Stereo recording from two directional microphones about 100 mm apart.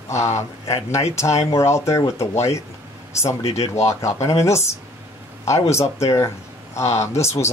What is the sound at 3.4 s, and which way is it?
Speech, 90° left.